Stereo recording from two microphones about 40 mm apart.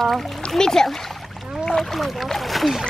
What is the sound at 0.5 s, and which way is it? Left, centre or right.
Speech, centre.